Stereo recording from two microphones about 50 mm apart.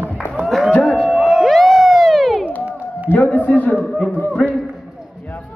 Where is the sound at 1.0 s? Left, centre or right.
Centre.